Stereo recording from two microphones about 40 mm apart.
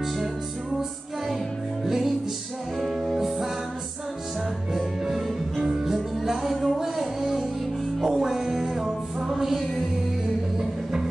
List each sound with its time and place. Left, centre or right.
1.9 s music: centre
4.7 s music: centre
5.6 s music: centre
6.2 s music: centre